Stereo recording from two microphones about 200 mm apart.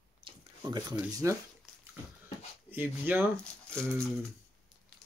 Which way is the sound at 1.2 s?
15° right (ahead or behind).